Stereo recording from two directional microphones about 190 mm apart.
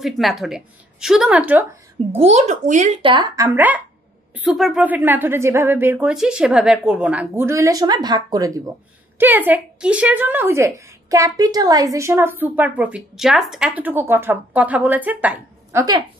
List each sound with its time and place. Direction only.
0.0 s a woman's voice: centre (ahead or behind)
2.1 s speech: 35° right (ahead or behind)
3.0 s speech: 25° right (ahead or behind); by 15.8 s 10° right (ahead or behind)